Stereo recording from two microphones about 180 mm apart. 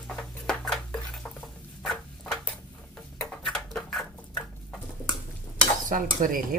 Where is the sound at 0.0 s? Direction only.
5° left (ahead or behind).